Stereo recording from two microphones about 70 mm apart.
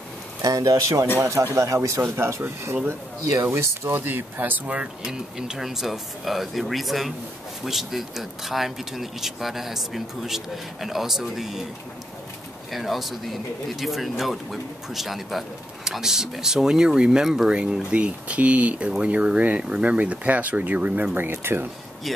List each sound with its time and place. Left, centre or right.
0.4 s speech: right
2.0 s speech: right
2.4 s speech: right
4.7 s speech: centre
12.7 s speech: centre; by 21.6 s right